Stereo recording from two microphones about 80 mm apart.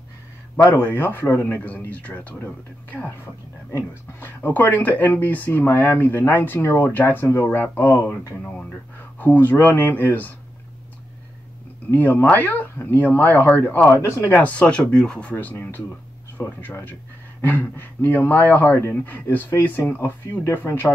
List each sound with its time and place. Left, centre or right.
0.6 s speech: left
3.7 s speech: left
9.2 s speech: left
11.9 s speech: left
14.3 s speech: centre
20.0 s speech: left